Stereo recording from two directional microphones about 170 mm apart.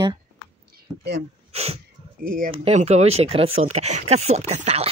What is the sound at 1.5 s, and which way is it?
Speech, 40° right (ahead or behind).